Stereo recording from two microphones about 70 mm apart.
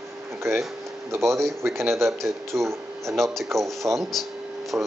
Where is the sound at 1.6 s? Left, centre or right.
Right.